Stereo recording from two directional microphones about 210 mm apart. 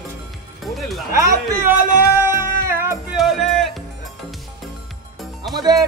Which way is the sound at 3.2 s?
Centre (ahead or behind).